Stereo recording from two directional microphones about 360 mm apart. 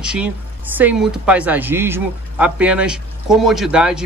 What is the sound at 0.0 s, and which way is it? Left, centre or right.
Speech, centre.